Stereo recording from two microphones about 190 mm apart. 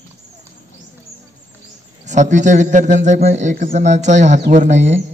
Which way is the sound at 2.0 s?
40° right (ahead or behind).